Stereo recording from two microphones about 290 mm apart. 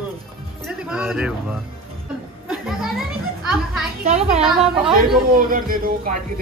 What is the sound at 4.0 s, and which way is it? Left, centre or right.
Speech, right.